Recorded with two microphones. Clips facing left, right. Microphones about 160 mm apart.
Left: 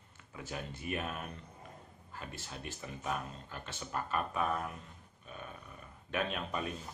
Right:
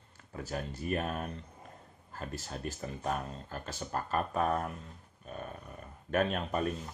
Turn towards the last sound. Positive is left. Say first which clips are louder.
# right 5 dB
turn(degrees=-45)  # may be behind; listen again after turning